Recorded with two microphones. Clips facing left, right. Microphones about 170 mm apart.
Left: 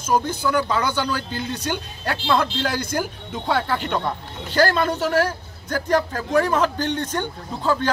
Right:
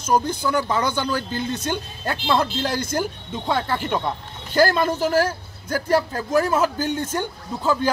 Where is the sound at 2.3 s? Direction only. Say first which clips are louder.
Even; 30° right (ahead or behind).